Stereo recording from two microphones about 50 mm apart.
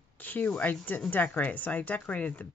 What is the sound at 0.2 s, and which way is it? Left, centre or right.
Speech, left.